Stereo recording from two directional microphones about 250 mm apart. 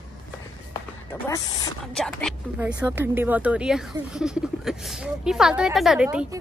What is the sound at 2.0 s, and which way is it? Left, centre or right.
Speech, centre.